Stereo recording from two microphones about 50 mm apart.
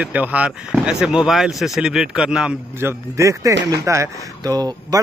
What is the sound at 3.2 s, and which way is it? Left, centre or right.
Speech, right.